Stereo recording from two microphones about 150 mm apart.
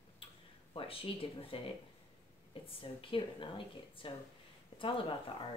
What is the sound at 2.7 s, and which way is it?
Speech, 35° left (ahead or behind).